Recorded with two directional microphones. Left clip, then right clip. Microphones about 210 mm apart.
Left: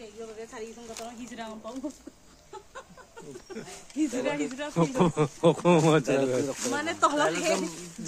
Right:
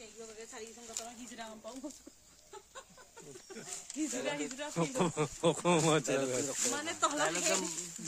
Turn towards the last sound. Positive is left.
turn(degrees=-30)  # may be behind; listen again after turning